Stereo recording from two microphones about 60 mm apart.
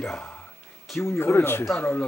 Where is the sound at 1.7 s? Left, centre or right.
Left.